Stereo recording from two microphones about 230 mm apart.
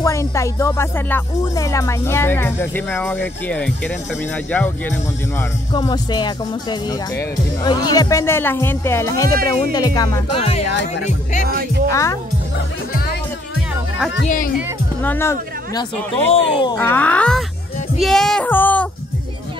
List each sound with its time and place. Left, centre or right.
0.0 s speech: centre
11.4 s speech: right
11.9 s speech: centre
14.2 s speech: left
15.0 s speech: centre
17.9 s female singing: centre